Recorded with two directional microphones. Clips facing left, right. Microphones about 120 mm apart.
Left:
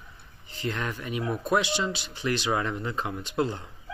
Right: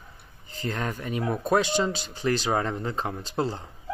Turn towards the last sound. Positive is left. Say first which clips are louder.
# even
turn(degrees=-35)  # may be behind; listen again after turning